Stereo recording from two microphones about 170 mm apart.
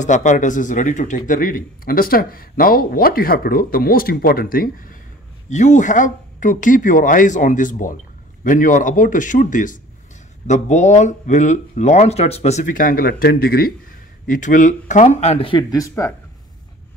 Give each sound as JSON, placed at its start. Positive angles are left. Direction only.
{"t": 0.0, "sound": "speech", "side_deg": 45}
{"t": 5.5, "sound": "speech", "side_deg": 45}
{"t": 14.2, "sound": "speech", "side_deg": 50}